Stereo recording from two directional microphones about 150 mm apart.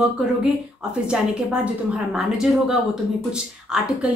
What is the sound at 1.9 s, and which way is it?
A woman's voice, 5° right (ahead or behind).